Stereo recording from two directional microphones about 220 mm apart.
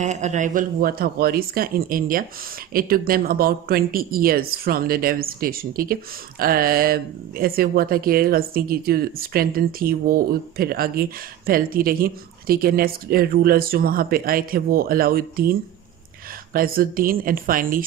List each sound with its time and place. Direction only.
0.0 s speech: 30° right (ahead or behind)
16.5 s speech: 40° right (ahead or behind)